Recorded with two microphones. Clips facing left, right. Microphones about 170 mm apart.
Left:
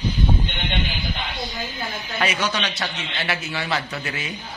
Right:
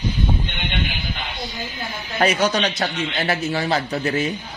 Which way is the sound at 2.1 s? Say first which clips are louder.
Right 6 dB; 40° right (ahead or behind).